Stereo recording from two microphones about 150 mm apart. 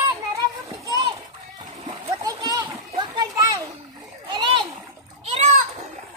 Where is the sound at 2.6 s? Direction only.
35° right (ahead or behind).